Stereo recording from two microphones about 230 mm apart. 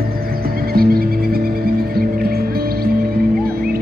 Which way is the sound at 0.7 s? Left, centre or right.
Right.